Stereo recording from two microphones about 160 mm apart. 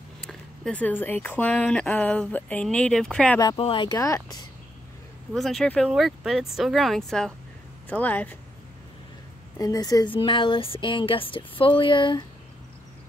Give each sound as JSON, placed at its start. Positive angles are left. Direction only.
{"t": 0.2, "sound": "speech", "side_deg": 5}
{"t": 3.3, "sound": "speech", "side_deg": 30}
{"t": 5.3, "sound": "speech", "side_deg": 0}
{"t": 9.6, "sound": "speech", "side_deg": 25}